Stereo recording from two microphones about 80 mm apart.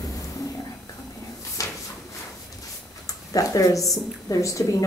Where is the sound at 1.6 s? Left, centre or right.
Left.